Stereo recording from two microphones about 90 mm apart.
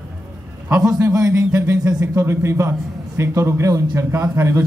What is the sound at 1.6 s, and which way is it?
A man's voice, 30° right (ahead or behind).